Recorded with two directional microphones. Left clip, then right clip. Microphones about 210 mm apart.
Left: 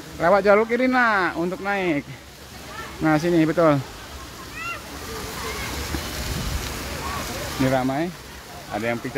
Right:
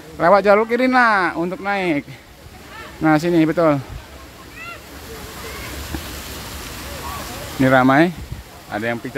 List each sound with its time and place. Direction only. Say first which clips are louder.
0.2 s speech: right 4 dB; 15° right (ahead or behind)
7.6 s speech: right 10 dB; 35° right (ahead or behind)
8.7 s speech: right 3 dB; 20° right (ahead or behind)